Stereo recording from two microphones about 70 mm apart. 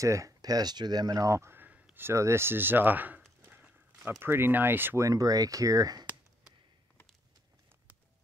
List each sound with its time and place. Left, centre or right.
0.0 s speech: right
4.2 s speech: right
4.9 s speech: right